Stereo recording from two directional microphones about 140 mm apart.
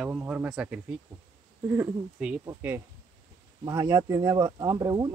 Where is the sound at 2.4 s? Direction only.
15° right (ahead or behind).